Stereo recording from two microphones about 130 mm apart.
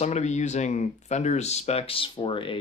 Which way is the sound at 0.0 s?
60° left (ahead or behind).